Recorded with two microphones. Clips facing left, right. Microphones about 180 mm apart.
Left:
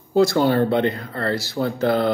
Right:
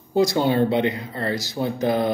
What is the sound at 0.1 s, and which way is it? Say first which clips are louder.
Speech: left 2 dB; 15° right (ahead or behind).